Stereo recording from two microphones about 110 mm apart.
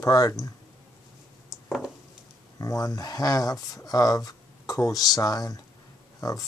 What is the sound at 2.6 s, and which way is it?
Speech, 30° left (ahead or behind).